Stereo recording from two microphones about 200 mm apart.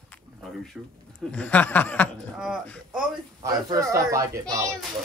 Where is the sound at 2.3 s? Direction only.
Centre (ahead or behind).